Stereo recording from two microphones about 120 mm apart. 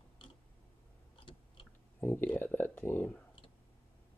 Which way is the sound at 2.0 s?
15° left (ahead or behind).